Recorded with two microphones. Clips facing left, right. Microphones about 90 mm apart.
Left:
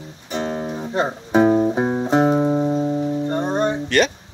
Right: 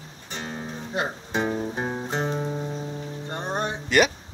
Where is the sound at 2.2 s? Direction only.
40° left (ahead or behind).